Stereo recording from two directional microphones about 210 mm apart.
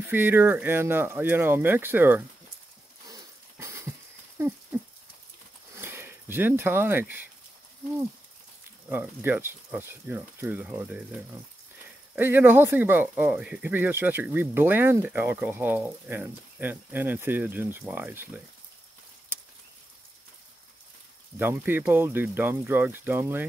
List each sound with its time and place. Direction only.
0.1 s speech: 10° right (ahead or behind)
3.1 s a sound: 15° right (ahead or behind)
5.8 s speech: 10° right (ahead or behind)
8.8 s speech: 10° right (ahead or behind)
12.2 s speech: 10° right (ahead or behind)
19.3 s a sound: 10° right (ahead or behind)
21.4 s speech: 10° right (ahead or behind)